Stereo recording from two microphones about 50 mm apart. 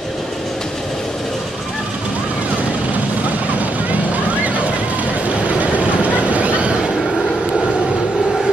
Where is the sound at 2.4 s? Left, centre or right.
Right.